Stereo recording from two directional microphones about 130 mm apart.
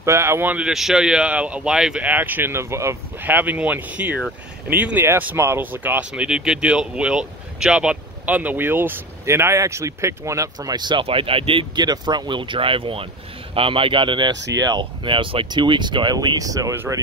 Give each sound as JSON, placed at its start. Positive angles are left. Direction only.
{"t": 0.0, "sound": "speech", "side_deg": -20}